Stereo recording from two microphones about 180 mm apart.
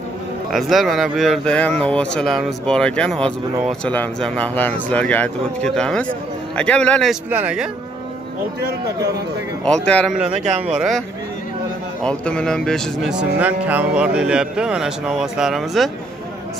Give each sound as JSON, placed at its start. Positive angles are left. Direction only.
{"t": 0.5, "sound": "speech", "side_deg": 0}
{"t": 7.2, "sound": "speech", "side_deg": -10}
{"t": 8.5, "sound": "speech", "side_deg": -60}
{"t": 9.8, "sound": "speech", "side_deg": 5}
{"t": 10.3, "sound": "speech", "side_deg": -40}
{"t": 10.7, "sound": "speech", "side_deg": 0}